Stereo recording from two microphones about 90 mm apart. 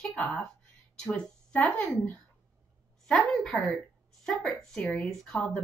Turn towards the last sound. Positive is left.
turn(degrees=10)  # may be behind; listen again after turning